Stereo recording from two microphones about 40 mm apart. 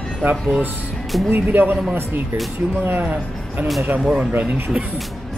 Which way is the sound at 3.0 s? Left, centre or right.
Right.